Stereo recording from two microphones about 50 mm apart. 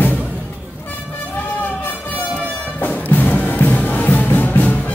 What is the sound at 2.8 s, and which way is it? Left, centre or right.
Music, left.